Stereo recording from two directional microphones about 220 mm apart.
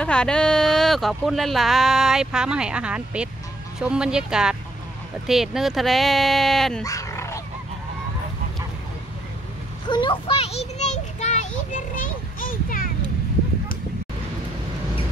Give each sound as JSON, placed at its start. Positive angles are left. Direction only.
{"t": 0.0, "sound": "speech", "side_deg": 5}
{"t": 6.8, "sound": "dog", "side_deg": 15}
{"t": 9.8, "sound": "a sound", "side_deg": 20}
{"t": 11.7, "sound": "children playing", "side_deg": 40}